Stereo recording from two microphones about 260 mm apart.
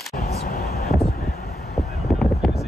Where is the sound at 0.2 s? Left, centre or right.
Left.